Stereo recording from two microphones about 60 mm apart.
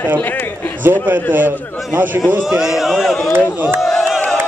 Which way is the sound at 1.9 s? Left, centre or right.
Right.